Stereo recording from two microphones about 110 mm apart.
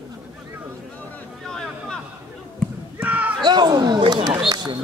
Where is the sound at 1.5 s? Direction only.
5° left (ahead or behind).